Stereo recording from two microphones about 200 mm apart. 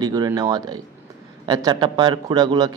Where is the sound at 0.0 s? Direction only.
20° right (ahead or behind).